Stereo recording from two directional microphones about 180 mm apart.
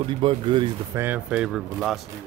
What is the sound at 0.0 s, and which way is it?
Speech, 30° right (ahead or behind).